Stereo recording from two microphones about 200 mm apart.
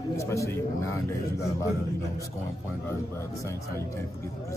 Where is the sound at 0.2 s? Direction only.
15° left (ahead or behind).